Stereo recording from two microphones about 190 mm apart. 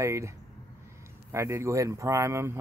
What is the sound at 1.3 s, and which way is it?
Speech, 15° right (ahead or behind).